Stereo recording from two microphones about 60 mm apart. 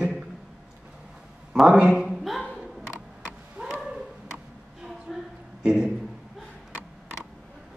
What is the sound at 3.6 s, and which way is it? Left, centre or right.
Bow-wow, right.